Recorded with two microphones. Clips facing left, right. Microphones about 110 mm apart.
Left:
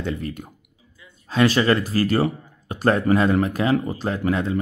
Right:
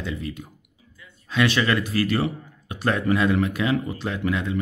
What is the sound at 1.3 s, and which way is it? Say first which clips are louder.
Speech: left 4 dB; 40° left (ahead or behind).